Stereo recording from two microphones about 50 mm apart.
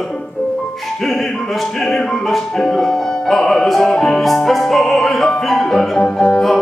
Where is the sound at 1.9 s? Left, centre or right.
Centre.